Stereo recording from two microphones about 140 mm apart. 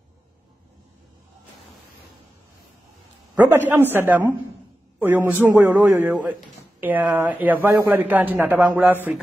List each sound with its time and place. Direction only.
3.3 s speech: 15° right (ahead or behind)